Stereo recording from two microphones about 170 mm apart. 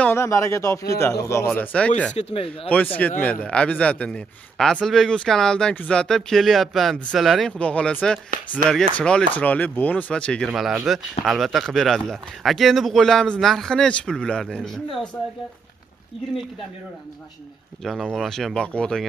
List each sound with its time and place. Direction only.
0.0 s speech: 15° left (ahead or behind)
2.1 s speech: 35° left (ahead or behind)
2.7 s speech: 10° left (ahead or behind)
17.8 s speech: centre (ahead or behind)